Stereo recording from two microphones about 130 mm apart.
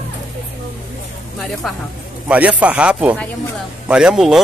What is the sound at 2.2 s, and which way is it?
A man's voice, 10° right (ahead or behind).